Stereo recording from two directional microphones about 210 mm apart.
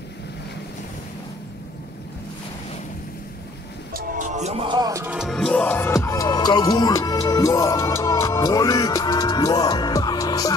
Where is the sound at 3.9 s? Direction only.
40° right (ahead or behind).